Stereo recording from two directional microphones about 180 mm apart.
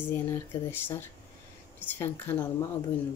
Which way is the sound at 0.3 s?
10° left (ahead or behind).